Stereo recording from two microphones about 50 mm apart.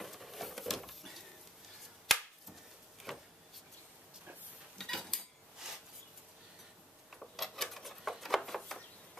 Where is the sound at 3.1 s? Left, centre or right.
Centre.